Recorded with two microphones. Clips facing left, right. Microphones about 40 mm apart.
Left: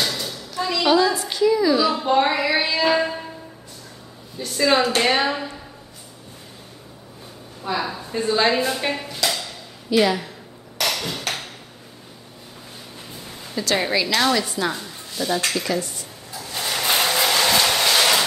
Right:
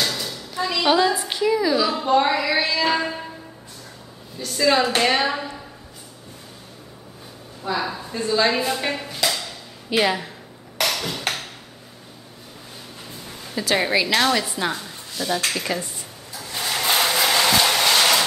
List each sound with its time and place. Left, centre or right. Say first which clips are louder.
0.0 s a sound: even; centre
0.7 s a woman's voice: left 1 dB; centre
2.1 s child singing: right 2 dB; centre
4.5 s child singing: even; centre
5.2 s a woman's voice: even; centre
7.6 s a woman's voice: even; centre
8.1 s child singing: left 1 dB; centre
8.7 s a sound: left 1 dB; centre
9.8 s a woman's voice: left 2 dB; right
10.8 s ping: even; centre
13.6 s a woman's voice: right 1 dB; centre
14.8 s speech: left 2 dB; centre
15.7 s speech: left 2 dB; right
16.5 s a sound: even; centre